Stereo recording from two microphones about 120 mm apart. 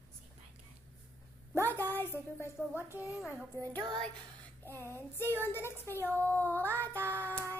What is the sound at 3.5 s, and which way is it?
Music, 35° right (ahead or behind).